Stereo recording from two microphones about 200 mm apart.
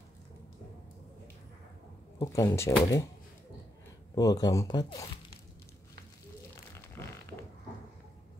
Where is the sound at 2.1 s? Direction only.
15° left (ahead or behind).